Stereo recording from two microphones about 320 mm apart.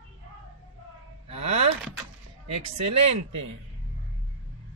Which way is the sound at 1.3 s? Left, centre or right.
Centre.